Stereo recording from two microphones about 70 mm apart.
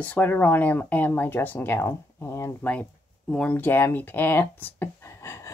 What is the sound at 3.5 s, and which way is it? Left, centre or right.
Speech, left.